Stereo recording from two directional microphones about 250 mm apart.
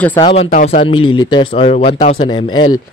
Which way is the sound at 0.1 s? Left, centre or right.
Left.